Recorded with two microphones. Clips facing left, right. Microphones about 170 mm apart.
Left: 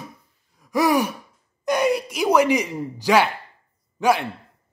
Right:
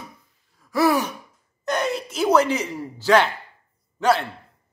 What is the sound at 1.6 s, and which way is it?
A man's voice, 10° left (ahead or behind).